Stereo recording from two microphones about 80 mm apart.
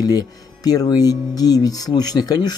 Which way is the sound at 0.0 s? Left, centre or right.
Left.